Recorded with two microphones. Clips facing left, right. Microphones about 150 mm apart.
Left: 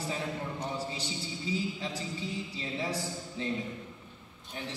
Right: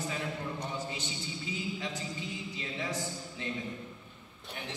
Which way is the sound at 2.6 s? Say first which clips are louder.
Left 1 dB; 30° left (ahead or behind).